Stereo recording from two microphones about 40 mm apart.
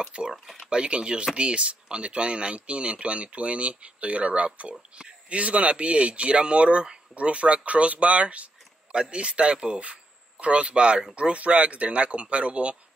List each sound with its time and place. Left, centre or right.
0.3 s speech: centre
0.7 s speech: right